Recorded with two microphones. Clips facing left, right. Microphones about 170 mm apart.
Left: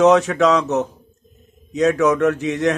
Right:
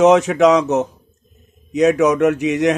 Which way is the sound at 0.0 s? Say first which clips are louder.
Right 2 dB; 20° right (ahead or behind).